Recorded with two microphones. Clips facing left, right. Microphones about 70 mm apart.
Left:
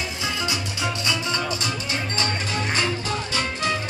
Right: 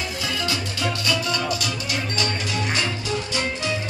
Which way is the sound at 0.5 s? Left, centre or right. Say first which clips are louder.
Right 1 dB; left.